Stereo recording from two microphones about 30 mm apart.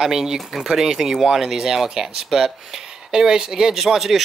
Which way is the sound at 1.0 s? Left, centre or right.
Centre.